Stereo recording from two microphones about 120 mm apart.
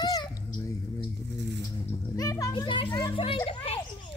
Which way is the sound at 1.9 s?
30° left (ahead or behind).